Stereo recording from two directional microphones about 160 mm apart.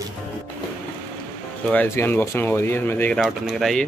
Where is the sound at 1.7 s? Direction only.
15° left (ahead or behind).